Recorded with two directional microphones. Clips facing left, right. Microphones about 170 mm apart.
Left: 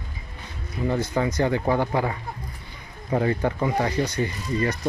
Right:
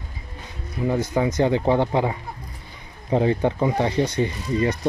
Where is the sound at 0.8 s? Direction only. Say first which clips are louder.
Right 2 dB; 15° right (ahead or behind).